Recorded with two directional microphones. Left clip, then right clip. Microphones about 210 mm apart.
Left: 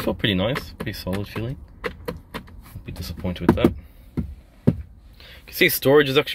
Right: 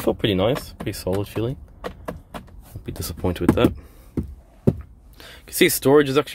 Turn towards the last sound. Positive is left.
turn(degrees=-5)  # may be behind; listen again after turning